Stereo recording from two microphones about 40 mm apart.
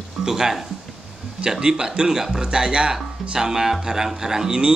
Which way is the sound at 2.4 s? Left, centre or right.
Right.